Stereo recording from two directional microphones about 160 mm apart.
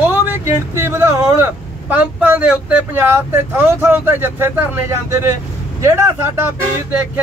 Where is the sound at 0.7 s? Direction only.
15° right (ahead or behind).